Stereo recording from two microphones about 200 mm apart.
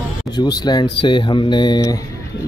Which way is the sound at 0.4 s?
20° left (ahead or behind).